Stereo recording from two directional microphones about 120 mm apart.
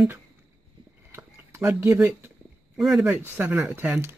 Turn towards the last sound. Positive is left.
turn(degrees=-15)  # may be behind; listen again after turning